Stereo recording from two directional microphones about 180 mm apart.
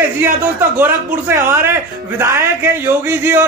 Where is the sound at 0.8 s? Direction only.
15° right (ahead or behind).